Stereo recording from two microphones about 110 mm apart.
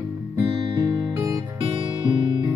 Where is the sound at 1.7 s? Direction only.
45° right (ahead or behind).